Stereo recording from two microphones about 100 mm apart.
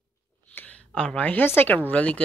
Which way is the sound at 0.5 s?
15° left (ahead or behind).